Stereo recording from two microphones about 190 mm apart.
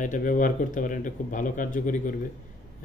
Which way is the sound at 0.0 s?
45° left (ahead or behind).